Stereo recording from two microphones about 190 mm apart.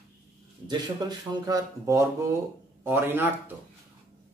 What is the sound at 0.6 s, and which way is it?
Speech, 20° right (ahead or behind).